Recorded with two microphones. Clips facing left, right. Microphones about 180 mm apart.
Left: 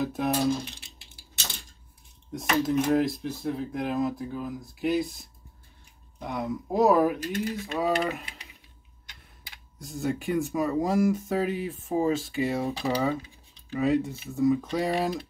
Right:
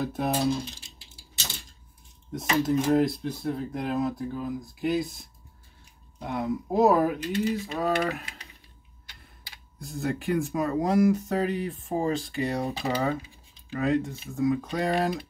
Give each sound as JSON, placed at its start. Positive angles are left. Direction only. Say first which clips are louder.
{"t": 0.0, "sound": "speech", "louder": "left 1 dB", "side_deg": 0}
{"t": 0.7, "sound": "a sound", "louder": "right 2 dB", "side_deg": 65}
{"t": 2.6, "sound": "speech", "louder": "right 1 dB", "side_deg": 0}
{"t": 6.2, "sound": "speech", "louder": "right 2 dB", "side_deg": 0}
{"t": 7.2, "sound": "speech", "louder": "right 3 dB", "side_deg": 50}
{"t": 7.6, "sound": "speech", "louder": "even", "side_deg": 0}
{"t": 9.8, "sound": "speech", "louder": "left 1 dB", "side_deg": 0}